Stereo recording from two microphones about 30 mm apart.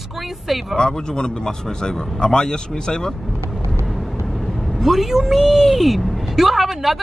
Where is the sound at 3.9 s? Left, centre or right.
Centre.